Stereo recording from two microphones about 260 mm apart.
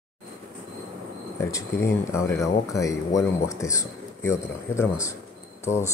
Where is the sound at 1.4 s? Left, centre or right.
Centre.